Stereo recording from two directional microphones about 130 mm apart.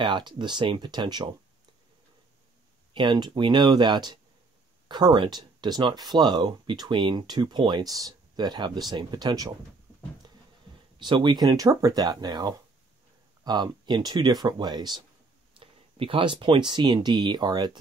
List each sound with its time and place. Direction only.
0.0 s speech: 35° right (ahead or behind)
2.9 s speech: 35° right (ahead or behind)
11.0 s speech: 35° right (ahead or behind)
15.6 s speech: 45° right (ahead or behind)